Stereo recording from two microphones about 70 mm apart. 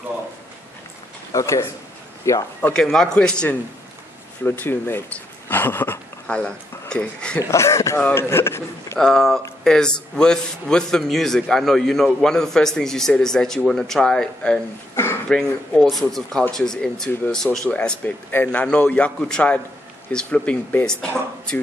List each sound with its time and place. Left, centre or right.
1.3 s speech: left
2.7 s a man's voice: centre
4.5 s speech: left
6.2 s speech: centre
7.3 s speech: left
9.0 s a man's voice: centre
17.6 s a man's voice: left